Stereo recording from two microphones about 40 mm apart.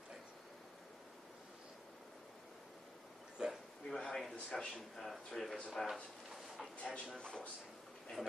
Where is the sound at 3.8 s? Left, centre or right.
Centre.